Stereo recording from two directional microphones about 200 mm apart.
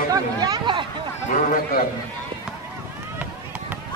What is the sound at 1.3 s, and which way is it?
Speech, 35° left (ahead or behind).